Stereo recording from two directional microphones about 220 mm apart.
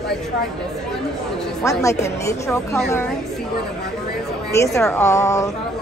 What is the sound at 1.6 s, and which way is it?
Speech, 15° left (ahead or behind).